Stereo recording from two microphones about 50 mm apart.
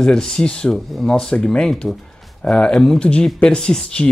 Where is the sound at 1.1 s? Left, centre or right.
Centre.